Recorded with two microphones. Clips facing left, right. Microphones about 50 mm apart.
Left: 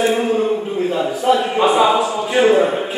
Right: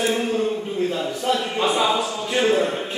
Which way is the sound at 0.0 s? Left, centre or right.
Centre.